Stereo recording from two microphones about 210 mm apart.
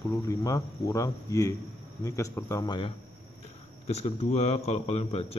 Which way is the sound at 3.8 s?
30° left (ahead or behind).